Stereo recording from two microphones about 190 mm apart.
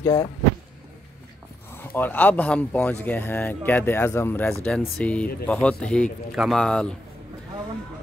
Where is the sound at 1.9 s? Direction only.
10° left (ahead or behind).